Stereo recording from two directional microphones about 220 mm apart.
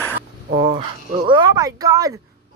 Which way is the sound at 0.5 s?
25° right (ahead or behind).